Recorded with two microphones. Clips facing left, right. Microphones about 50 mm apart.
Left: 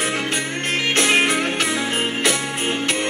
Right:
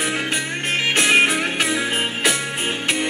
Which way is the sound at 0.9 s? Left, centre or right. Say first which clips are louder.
Right 2 dB; centre.